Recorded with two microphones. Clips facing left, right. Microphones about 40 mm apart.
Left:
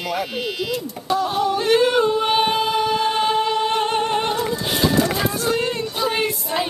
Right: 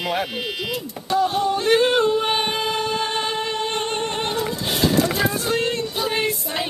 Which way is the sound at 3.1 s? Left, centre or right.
Centre.